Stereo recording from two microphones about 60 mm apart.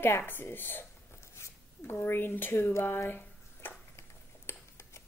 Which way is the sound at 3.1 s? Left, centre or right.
Left.